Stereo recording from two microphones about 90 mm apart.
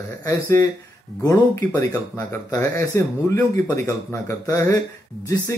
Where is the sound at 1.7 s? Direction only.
35° left (ahead or behind).